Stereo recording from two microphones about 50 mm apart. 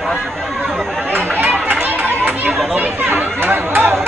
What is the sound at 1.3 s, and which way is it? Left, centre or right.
Chatter, right.